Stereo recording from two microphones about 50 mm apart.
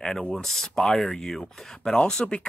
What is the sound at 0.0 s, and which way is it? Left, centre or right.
Speech, centre.